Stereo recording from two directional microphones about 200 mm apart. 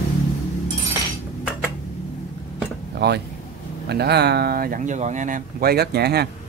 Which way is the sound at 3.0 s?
60° right (ahead or behind).